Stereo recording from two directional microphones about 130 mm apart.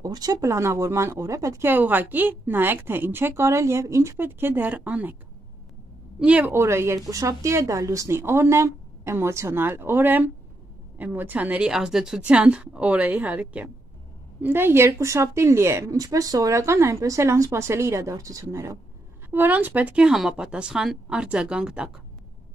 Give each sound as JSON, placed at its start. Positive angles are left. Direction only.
{"t": 0.0, "sound": "speech", "side_deg": -30}
{"t": 6.1, "sound": "a woman's voice", "side_deg": -10}